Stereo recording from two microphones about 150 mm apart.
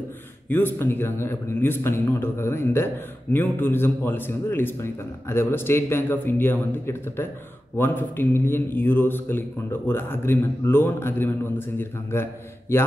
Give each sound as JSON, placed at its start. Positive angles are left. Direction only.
{"t": 0.5, "sound": "speech", "side_deg": 15}